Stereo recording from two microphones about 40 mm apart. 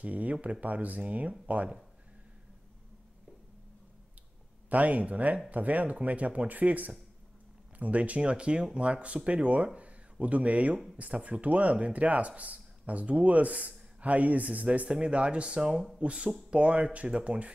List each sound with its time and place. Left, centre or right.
0.0 s speech: right
4.6 s speech: right
14.9 s speech: right